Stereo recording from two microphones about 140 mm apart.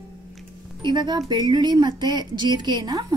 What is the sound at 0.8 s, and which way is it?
A woman's voice, 30° right (ahead or behind).